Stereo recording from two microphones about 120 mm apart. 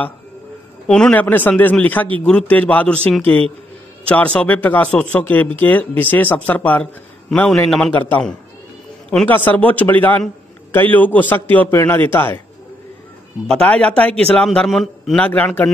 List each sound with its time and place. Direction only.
0.8 s speech: 5° left (ahead or behind)
9.3 s speech: 15° left (ahead or behind)
13.5 s speech: 5° left (ahead or behind)
15.2 s speech: 10° left (ahead or behind)